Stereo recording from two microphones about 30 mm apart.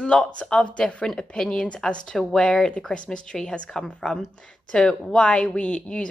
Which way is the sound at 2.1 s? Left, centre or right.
Centre.